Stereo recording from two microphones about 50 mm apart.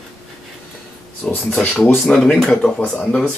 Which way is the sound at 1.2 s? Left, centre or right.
Centre.